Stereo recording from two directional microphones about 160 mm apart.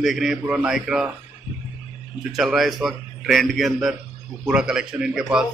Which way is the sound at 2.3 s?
Centre (ahead or behind).